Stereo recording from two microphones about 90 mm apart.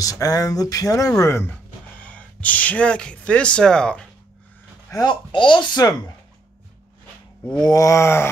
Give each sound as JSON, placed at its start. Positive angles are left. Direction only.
{"t": 0.0, "sound": "speech", "side_deg": 40}
{"t": 2.0, "sound": "speech", "side_deg": 15}
{"t": 4.9, "sound": "speech", "side_deg": 35}
{"t": 5.3, "sound": "speech", "side_deg": 65}
{"t": 7.6, "sound": "speech", "side_deg": 40}